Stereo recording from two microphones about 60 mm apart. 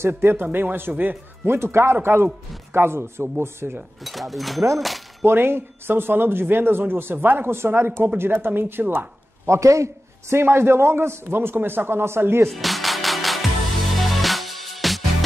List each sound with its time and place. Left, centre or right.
0.2 s a man's voice: right
4.0 s speech: centre
5.2 s speech: right
9.5 s a man's voice: right
10.3 s a man's voice: right
12.4 s music: centre